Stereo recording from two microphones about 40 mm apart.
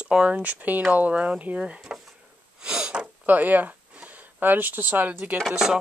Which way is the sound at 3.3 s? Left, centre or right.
Right.